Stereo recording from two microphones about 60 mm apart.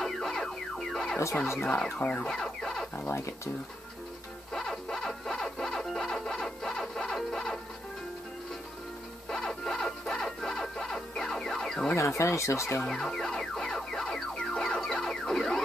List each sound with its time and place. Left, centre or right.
0.0 s music: centre
2.0 s a sound: left
2.2 s a sound: centre
3.1 s speech: left
4.5 s music: centre
9.3 s music: centre
11.9 s speech: left
12.8 s music: centre